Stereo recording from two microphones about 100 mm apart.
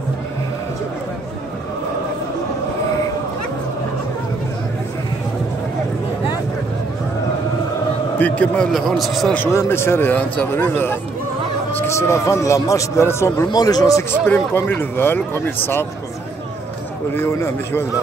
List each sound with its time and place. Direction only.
8.2 s a man's voice: 15° left (ahead or behind)
8.7 s a man's voice: centre (ahead or behind)
9.5 s a man's voice: 25° left (ahead or behind)
13.5 s speech: 40° left (ahead or behind)
14.2 s a man's voice: 20° left (ahead or behind)
17.1 s a man's voice: 25° left (ahead or behind)